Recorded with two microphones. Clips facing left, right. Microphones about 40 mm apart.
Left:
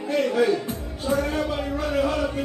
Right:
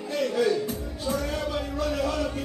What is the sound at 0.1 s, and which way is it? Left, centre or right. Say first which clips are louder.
Music: left 3 dB; left.